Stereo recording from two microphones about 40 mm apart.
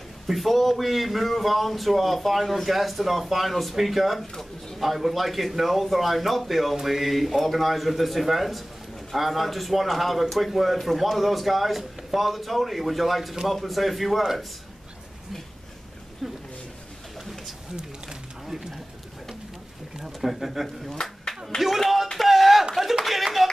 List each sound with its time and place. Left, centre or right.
0.3 s speech: centre
16.2 s speech: centre
17.2 s a sound: centre
17.7 s pigeon: centre
20.0 s speech: centre
21.5 s a sound: centre
23.0 s clapping: centre